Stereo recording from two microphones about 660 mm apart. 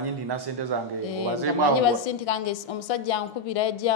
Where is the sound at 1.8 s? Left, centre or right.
Left.